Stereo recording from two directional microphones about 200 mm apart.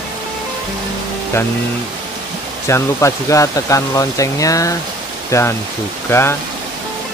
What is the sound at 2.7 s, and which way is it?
Speech, 15° left (ahead or behind).